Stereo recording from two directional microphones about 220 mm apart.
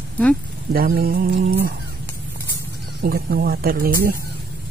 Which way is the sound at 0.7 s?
40° right (ahead or behind).